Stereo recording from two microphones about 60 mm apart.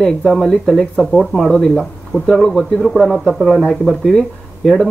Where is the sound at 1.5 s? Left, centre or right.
Centre.